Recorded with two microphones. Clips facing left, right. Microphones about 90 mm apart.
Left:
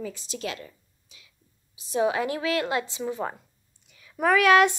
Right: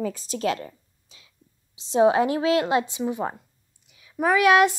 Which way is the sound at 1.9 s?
25° right (ahead or behind).